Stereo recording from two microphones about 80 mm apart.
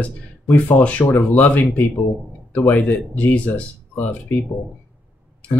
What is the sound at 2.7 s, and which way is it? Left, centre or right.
Speech, centre.